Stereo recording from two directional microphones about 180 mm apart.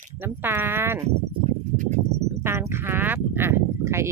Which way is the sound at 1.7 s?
45° right (ahead or behind).